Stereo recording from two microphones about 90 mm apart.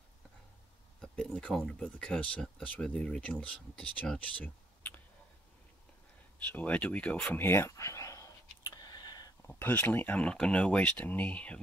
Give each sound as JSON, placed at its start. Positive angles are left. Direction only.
{"t": 1.0, "sound": "a sound", "side_deg": 10}
{"t": 1.6, "sound": "speech", "side_deg": 10}
{"t": 6.5, "sound": "speech", "side_deg": 15}
{"t": 7.3, "sound": "speech", "side_deg": 25}
{"t": 7.7, "sound": "dog", "side_deg": 35}
{"t": 8.7, "sound": "a sound", "side_deg": 50}
{"t": 9.5, "sound": "speech", "side_deg": 20}